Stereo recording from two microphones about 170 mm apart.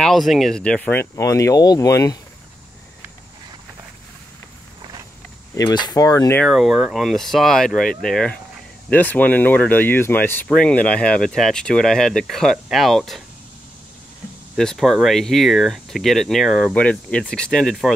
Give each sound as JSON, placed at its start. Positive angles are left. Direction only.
{"t": 0.0, "sound": "speech", "side_deg": 0}
{"t": 5.5, "sound": "speech", "side_deg": 20}
{"t": 6.4, "sound": "speech", "side_deg": 0}
{"t": 14.6, "sound": "speech", "side_deg": 0}